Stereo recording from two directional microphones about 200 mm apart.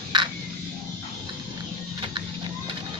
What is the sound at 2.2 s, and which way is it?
Printer, 20° right (ahead or behind).